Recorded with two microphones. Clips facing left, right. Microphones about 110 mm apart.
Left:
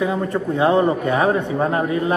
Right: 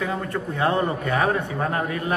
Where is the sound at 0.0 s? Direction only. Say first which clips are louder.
Left 6 dB; 20° left (ahead or behind).